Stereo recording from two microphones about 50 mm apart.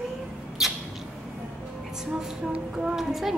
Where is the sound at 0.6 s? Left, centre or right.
Centre.